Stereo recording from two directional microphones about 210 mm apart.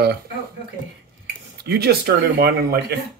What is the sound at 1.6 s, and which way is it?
Speech, 50° right (ahead or behind).